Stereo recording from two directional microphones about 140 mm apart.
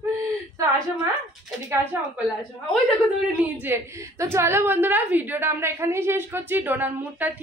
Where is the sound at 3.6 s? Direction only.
20° right (ahead or behind).